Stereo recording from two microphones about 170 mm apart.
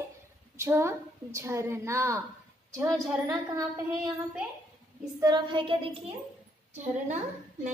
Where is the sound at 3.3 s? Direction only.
20° right (ahead or behind).